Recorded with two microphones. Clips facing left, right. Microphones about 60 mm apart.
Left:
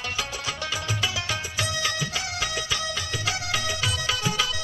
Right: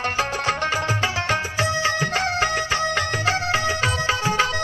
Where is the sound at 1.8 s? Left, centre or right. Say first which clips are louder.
Right 8 dB; right.